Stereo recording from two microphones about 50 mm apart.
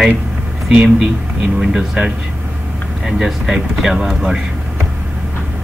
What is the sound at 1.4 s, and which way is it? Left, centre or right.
Speech, centre.